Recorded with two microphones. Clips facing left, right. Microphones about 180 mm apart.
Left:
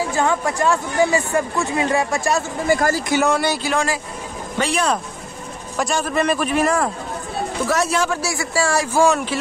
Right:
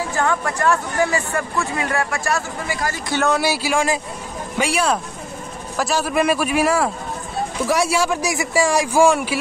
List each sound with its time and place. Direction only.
0.1 s speech: 15° left (ahead or behind)
2.7 s speech: 45° left (ahead or behind)
3.3 s speech: 5° right (ahead or behind)